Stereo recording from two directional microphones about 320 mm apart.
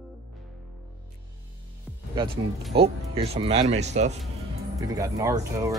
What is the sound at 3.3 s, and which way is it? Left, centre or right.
Speech, centre.